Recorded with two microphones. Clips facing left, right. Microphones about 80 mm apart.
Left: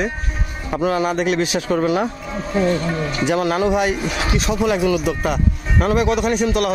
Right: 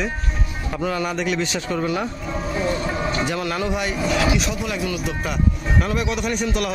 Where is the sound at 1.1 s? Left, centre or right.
Left.